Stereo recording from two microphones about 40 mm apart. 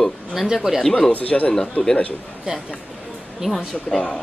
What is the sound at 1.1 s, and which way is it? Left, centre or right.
Speech, left.